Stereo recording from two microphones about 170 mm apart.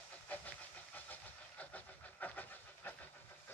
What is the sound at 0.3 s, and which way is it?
Steam, 10° left (ahead or behind).